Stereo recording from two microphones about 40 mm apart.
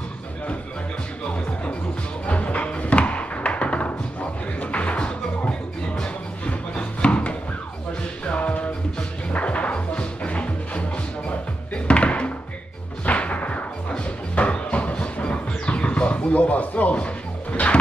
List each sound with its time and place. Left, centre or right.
2.2 s thunk: left
4.6 s music: left